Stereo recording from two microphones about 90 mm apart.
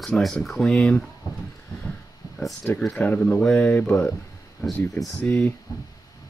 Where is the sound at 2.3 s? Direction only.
10° left (ahead or behind).